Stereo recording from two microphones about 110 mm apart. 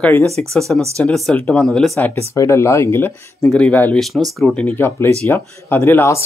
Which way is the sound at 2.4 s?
25° left (ahead or behind).